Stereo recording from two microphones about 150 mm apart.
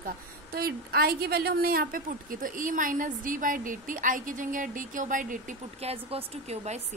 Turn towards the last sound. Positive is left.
turn(degrees=-45)  # may be behind; listen again after turning